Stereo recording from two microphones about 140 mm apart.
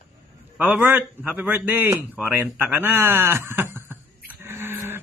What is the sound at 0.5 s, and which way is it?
A man's voice, 10° right (ahead or behind).